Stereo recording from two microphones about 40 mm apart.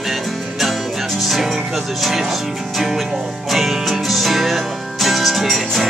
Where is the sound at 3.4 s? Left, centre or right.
Centre.